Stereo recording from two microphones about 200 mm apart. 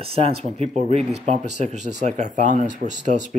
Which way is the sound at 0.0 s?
30° right (ahead or behind).